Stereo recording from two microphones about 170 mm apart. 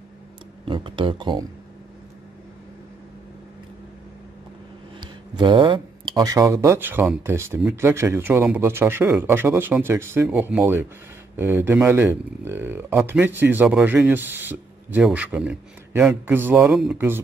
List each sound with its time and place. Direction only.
0.7 s speech: 30° right (ahead or behind)
5.3 s speech: 30° right (ahead or behind); by 16.9 s centre (ahead or behind)